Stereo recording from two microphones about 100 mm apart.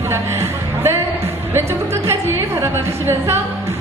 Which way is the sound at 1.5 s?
25° right (ahead or behind).